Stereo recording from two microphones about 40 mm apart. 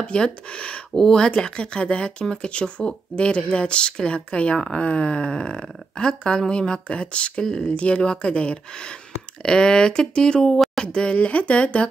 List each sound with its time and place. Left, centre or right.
0.0 s speech: left
7.4 s speech: centre
7.7 s speech: left